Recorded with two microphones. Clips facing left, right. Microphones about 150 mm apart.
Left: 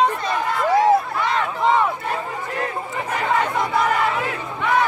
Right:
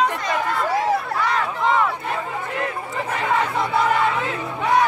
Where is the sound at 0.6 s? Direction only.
20° left (ahead or behind).